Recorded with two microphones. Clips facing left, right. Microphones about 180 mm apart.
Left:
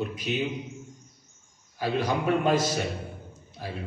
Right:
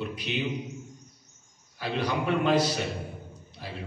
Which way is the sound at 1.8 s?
45° left (ahead or behind).